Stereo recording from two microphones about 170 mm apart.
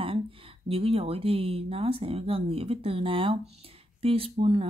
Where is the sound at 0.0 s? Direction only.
30° right (ahead or behind).